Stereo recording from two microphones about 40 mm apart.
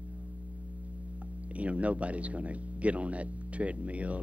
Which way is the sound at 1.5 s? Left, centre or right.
Right.